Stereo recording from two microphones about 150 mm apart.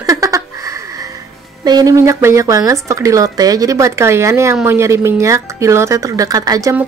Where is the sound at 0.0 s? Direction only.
20° right (ahead or behind).